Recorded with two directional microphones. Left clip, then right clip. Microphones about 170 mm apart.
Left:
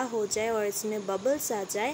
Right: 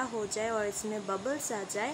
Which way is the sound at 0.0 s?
15° left (ahead or behind).